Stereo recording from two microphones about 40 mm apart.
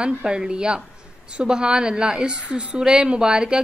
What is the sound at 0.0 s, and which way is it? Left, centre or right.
A woman's voice, centre.